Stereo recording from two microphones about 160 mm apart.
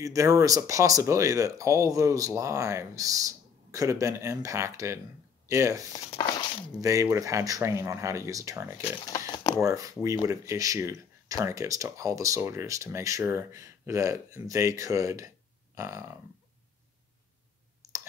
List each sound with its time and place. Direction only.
0.0 s speech: 20° right (ahead or behind)
9.0 s crumpling: 25° left (ahead or behind)
9.6 s speech: 20° right (ahead or behind)